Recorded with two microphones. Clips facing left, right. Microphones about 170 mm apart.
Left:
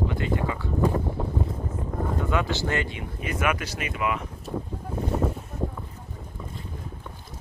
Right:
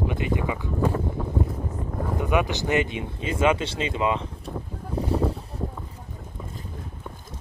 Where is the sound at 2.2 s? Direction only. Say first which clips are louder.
Right 4 dB; 15° right (ahead or behind).